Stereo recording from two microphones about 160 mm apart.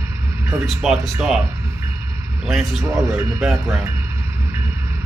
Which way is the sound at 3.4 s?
5° right (ahead or behind).